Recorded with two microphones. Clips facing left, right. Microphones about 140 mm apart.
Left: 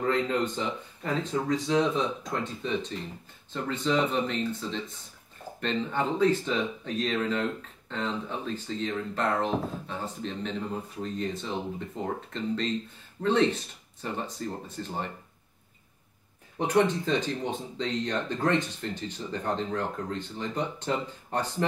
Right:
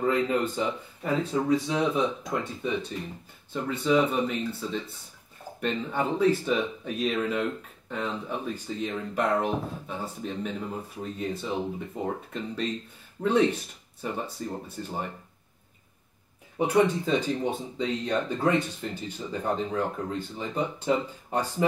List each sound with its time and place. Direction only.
0.0 s speech: 10° right (ahead or behind)
16.5 s speech: 10° right (ahead or behind)